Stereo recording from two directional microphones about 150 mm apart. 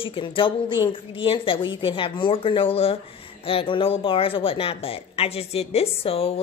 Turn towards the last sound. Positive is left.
turn(degrees=40)  # may be behind; listen again after turning